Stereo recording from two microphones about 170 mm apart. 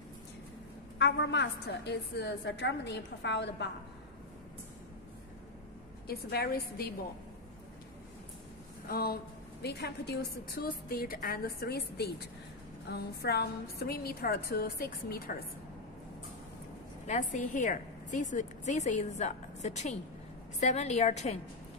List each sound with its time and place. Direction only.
0.9 s a woman's voice: 90° left
6.0 s a woman's voice: 65° left (ahead or behind)
8.8 s a woman's voice: 60° left (ahead or behind)
17.0 s a woman's voice: 45° left (ahead or behind)